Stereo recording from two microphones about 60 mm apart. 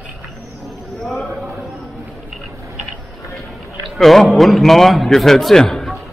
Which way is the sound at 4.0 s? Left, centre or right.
Centre.